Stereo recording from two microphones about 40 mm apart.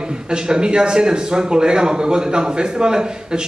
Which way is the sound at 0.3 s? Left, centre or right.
Right.